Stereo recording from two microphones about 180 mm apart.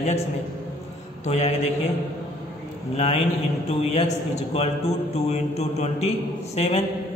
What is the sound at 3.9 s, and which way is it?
A man's voice, 40° left (ahead or behind).